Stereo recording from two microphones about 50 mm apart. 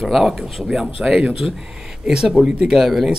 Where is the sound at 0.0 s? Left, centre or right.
Centre.